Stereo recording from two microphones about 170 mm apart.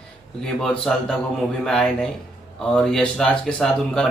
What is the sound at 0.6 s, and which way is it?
Speech, 5° left (ahead or behind).